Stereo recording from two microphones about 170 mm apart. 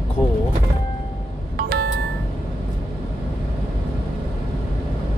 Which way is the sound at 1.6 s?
70° right (ahead or behind).